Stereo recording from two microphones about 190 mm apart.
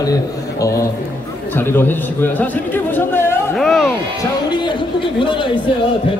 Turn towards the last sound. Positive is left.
turn(degrees=25)  # may be behind; listen again after turning